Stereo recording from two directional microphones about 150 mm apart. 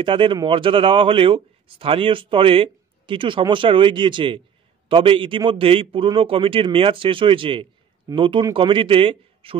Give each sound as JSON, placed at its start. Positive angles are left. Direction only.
{"t": 0.0, "sound": "speech", "side_deg": -35}